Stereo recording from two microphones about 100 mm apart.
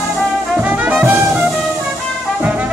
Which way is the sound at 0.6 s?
15° right (ahead or behind).